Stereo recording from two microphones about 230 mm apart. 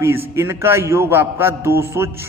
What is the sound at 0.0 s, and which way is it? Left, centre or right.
A man's voice, centre.